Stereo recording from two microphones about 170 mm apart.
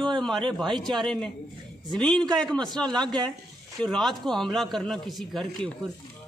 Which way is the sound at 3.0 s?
25° right (ahead or behind).